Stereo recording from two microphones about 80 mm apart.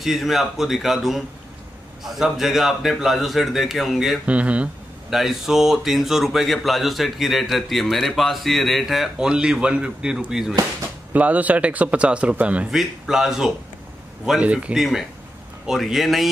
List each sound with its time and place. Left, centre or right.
0.0 s speech: centre
4.3 s a man's voice: centre
5.1 s speech: centre
11.1 s a man's voice: centre
12.7 s speech: centre
14.4 s a man's voice: centre
14.8 s speech: centre